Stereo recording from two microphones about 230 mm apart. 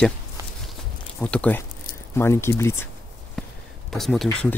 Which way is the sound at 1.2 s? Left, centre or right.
Centre.